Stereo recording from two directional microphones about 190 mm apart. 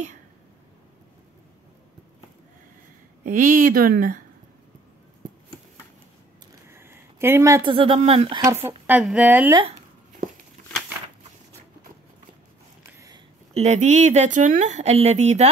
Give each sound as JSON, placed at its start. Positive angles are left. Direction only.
{"t": 3.3, "sound": "speech", "side_deg": -45}
{"t": 6.7, "sound": "a sound", "side_deg": -15}
{"t": 7.7, "sound": "speech", "side_deg": -30}
{"t": 8.4, "sound": "speech", "side_deg": -15}
{"t": 12.9, "sound": "a sound", "side_deg": -15}
{"t": 13.5, "sound": "speech", "side_deg": -35}